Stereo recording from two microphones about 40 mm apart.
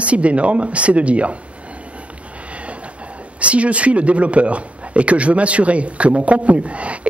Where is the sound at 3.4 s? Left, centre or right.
Right.